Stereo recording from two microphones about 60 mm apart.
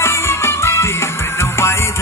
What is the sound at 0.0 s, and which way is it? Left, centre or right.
Music, left.